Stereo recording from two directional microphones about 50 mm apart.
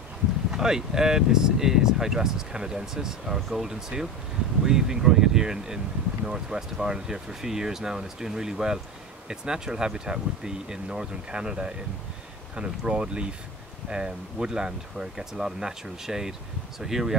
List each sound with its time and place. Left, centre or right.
0.5 s speech: centre
3.3 s speech: centre
3.6 s speech: centre